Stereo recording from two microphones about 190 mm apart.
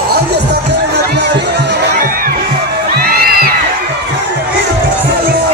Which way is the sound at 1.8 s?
50° right (ahead or behind).